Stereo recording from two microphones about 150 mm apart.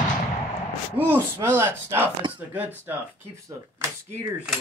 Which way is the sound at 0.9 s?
15° right (ahead or behind).